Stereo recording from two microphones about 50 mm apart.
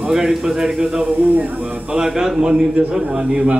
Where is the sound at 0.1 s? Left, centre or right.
Centre.